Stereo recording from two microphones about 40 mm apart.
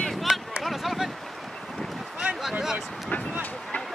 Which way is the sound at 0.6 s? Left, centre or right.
Centre.